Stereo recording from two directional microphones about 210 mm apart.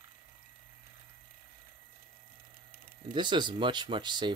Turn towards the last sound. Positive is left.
turn(degrees=-20)  # may be behind; listen again after turning